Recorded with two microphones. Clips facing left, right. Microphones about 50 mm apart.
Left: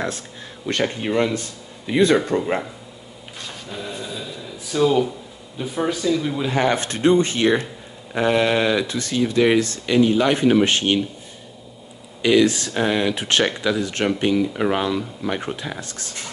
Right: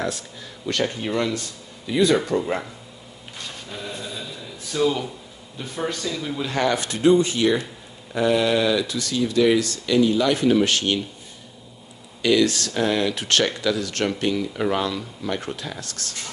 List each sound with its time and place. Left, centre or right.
0.7 s speech: left
3.3 s a sound: centre
5.6 s a man's voice: centre
6.7 s speech: left
12.2 s speech: left